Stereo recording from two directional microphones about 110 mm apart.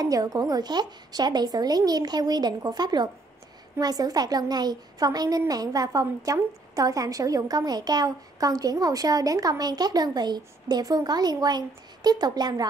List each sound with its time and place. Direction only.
0.0 s a woman's voice: 35° right (ahead or behind)